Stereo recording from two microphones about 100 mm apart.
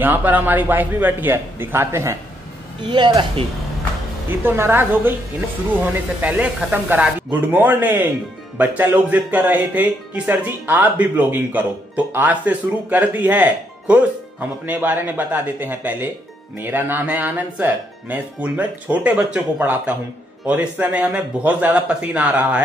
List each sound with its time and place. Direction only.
0.0 s a man's voice: 20° right (ahead or behind)
2.9 s speech: 50° right (ahead or behind)
4.4 s a man's voice: 20° right (ahead or behind)
6.2 s speech: 15° right (ahead or behind)